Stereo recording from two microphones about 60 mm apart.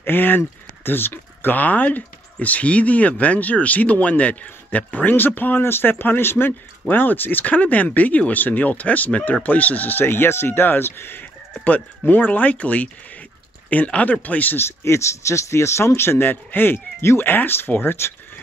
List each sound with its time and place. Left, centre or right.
0.0 s speech: left
14.6 s speech: left